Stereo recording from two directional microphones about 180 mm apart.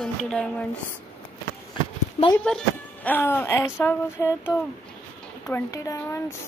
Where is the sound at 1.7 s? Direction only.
25° left (ahead or behind).